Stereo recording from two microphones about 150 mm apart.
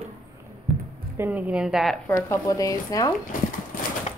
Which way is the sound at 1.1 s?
15° right (ahead or behind).